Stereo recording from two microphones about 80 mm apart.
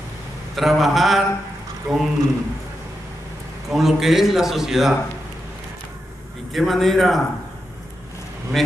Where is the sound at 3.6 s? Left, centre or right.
Centre.